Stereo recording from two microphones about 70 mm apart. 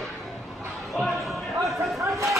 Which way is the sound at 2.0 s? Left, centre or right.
Right.